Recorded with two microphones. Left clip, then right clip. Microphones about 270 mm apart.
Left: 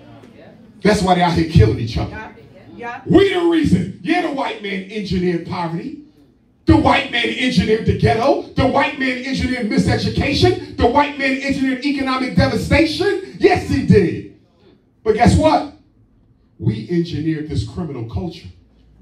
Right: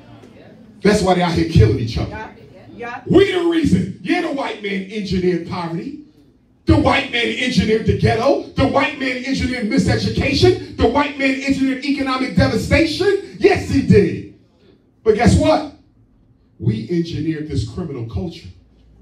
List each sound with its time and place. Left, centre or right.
0.7 s speech: left
3.1 s speech: left
6.6 s speech: left
16.6 s speech: left